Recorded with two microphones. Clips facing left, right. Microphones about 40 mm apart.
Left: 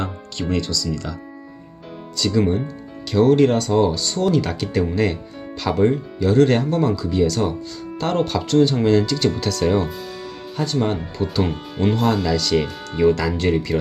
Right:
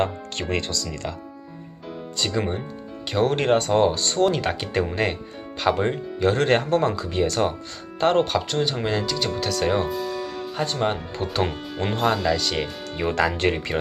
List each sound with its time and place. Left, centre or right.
0.0 s speech: right
0.6 s speech: right
2.1 s speech: right
5.9 s speech: right
8.3 s speech: centre
10.6 s speech: right
12.0 s speech: centre
13.1 s speech: right